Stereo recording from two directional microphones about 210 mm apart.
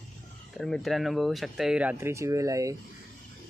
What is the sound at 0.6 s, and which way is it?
Speech, centre (ahead or behind).